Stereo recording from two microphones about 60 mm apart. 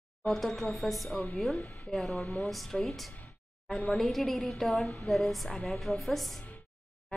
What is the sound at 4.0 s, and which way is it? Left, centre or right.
A woman's voice, centre.